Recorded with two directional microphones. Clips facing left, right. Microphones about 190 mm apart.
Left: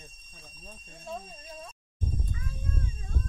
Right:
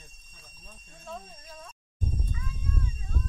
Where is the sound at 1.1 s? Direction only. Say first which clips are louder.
Left 2 dB; 25° left (ahead or behind).